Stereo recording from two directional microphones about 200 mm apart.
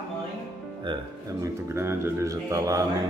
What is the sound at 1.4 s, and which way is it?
Speech, 10° right (ahead or behind).